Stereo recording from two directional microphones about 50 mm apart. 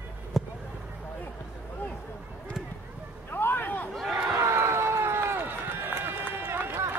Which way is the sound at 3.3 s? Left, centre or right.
Left.